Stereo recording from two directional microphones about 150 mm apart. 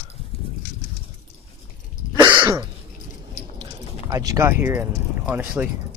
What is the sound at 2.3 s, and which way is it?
Throat clearing, 15° right (ahead or behind).